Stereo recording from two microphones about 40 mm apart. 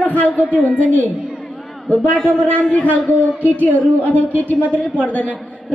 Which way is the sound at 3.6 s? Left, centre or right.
Left.